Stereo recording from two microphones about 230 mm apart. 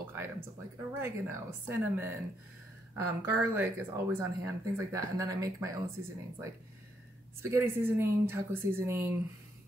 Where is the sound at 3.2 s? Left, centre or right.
Centre.